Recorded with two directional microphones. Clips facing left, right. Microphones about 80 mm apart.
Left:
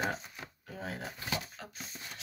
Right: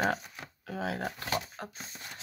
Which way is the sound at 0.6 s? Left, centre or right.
Right.